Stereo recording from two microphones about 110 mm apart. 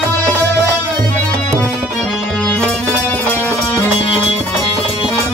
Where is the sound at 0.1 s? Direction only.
15° left (ahead or behind).